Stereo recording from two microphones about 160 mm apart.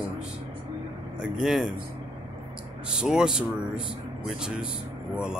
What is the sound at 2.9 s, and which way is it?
Speech, 5° right (ahead or behind).